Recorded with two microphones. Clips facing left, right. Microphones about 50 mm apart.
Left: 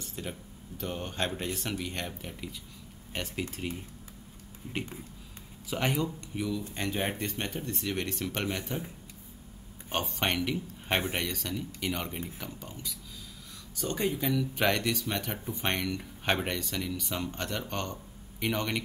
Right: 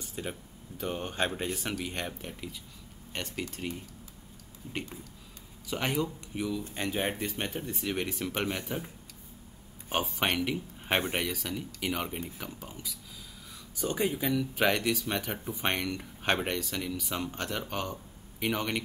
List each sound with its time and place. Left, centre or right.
0.0 s speech: centre
3.1 s speech: centre